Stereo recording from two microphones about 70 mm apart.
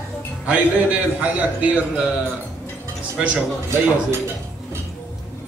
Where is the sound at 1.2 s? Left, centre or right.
Centre.